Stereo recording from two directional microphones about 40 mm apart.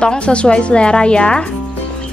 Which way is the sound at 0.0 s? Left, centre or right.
Left.